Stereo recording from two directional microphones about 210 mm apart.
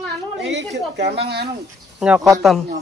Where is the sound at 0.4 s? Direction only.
55° right (ahead or behind).